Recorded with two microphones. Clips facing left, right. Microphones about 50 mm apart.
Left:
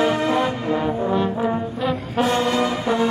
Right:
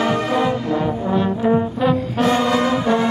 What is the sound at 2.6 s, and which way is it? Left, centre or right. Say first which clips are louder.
Music: right 3 dB; right.